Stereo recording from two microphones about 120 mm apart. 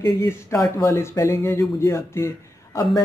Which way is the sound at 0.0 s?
25° left (ahead or behind).